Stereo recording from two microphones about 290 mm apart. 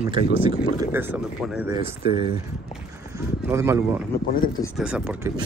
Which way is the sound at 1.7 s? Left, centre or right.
Centre.